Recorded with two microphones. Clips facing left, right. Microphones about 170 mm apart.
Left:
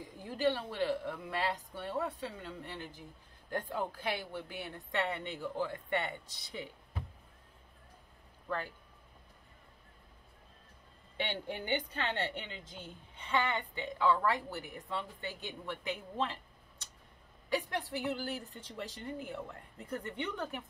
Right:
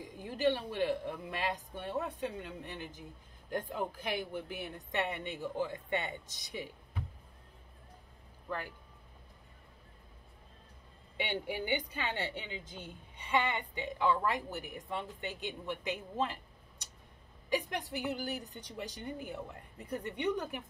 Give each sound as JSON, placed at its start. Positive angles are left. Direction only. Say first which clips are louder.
{"t": 0.0, "sound": "a woman's voice", "louder": "right 1 dB", "side_deg": -20}
{"t": 11.1, "sound": "a woman's voice", "louder": "right 2 dB", "side_deg": -10}
{"t": 17.5, "sound": "a woman's voice", "louder": "even", "side_deg": -15}